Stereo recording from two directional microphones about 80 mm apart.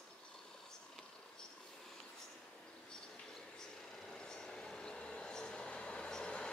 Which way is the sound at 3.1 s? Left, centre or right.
Centre.